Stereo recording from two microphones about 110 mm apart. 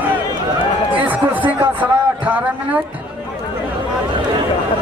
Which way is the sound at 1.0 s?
15° right (ahead or behind).